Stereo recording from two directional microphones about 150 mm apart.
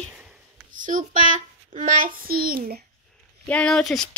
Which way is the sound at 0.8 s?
60° right (ahead or behind).